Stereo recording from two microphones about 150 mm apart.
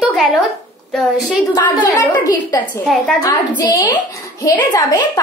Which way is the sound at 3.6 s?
25° left (ahead or behind).